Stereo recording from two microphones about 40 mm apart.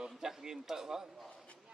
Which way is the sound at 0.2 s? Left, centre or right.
Centre.